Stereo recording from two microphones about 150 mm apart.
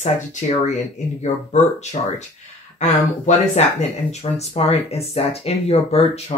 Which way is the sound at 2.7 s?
50° left (ahead or behind).